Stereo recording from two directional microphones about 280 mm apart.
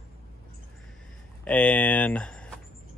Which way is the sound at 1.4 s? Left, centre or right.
Centre.